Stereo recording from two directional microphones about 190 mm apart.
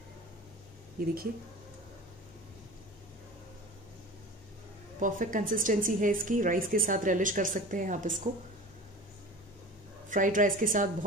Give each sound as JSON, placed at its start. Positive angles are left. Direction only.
{"t": 5.0, "sound": "a woman's voice", "side_deg": -45}
{"t": 10.0, "sound": "a woman's voice", "side_deg": -45}